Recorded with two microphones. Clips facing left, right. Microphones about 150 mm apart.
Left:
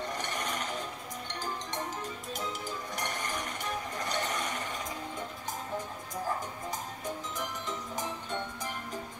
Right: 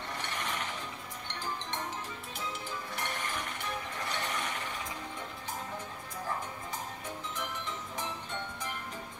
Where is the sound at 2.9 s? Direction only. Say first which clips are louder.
Left 1 dB; 40° left (ahead or behind).